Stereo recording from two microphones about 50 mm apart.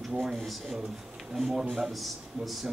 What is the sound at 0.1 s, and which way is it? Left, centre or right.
A man's voice, centre.